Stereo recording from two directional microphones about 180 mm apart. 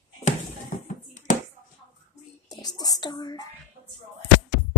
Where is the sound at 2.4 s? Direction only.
20° left (ahead or behind).